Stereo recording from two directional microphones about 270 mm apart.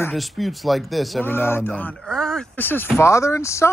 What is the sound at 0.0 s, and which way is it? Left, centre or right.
Speech, centre.